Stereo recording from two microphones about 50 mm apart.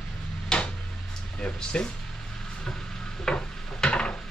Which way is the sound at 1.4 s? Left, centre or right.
Centre.